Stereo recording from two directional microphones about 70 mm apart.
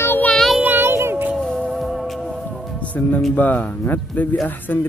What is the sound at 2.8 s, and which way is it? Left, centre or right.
Speech, left.